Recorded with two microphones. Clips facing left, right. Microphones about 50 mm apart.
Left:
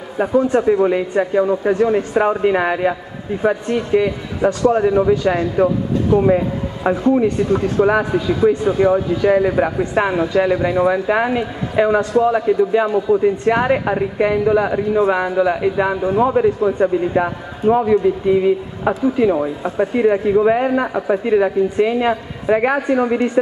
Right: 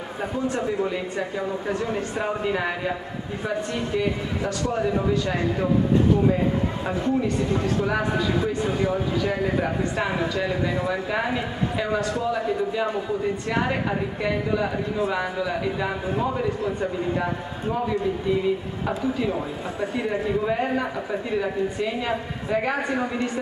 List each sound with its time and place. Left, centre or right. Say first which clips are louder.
0.2 s a man's voice: left 12 dB; left